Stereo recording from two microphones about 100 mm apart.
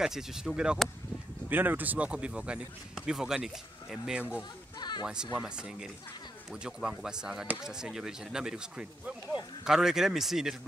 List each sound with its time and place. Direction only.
0.0 s speech: 5° right (ahead or behind)
1.5 s speech: 20° right (ahead or behind)
4.4 s speech: 45° left (ahead or behind)
5.0 s speech: 10° right (ahead or behind)